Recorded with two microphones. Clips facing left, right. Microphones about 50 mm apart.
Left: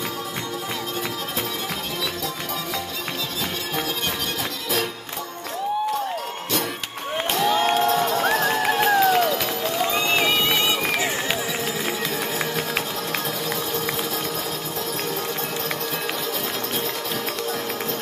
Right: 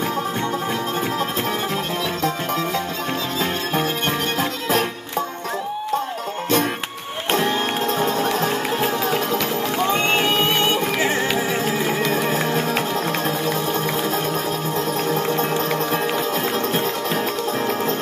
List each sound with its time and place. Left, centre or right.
4.4 s music: right
7.2 s crowd: right
7.9 s music: right
8.5 s run: left
9.0 s run: right
9.8 s music: right
15.0 s music: right